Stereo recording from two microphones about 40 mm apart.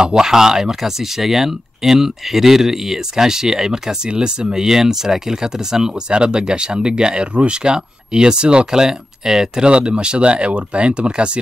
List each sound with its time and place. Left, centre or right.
0.0 s speech: centre